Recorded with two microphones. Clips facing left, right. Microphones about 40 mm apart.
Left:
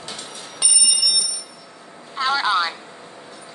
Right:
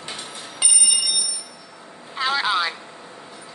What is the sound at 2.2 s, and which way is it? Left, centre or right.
Telephone, centre.